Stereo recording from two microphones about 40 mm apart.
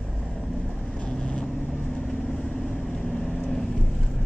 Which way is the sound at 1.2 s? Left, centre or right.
Left.